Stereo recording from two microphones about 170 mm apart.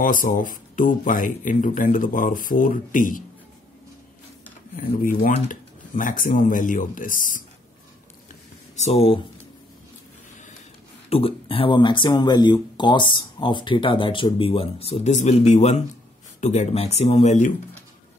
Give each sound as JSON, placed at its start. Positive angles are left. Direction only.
{"t": 0.0, "sound": "speech", "side_deg": 55}
{"t": 4.7, "sound": "speech", "side_deg": 55}
{"t": 8.7, "sound": "speech", "side_deg": 40}
{"t": 11.1, "sound": "speech", "side_deg": 35}